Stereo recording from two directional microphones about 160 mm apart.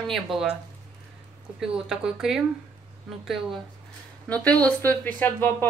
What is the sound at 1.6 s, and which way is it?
Speech, centre (ahead or behind).